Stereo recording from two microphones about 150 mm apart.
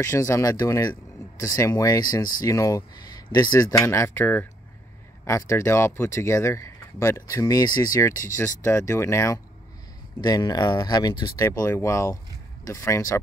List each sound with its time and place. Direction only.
0.0 s speech: 20° left (ahead or behind)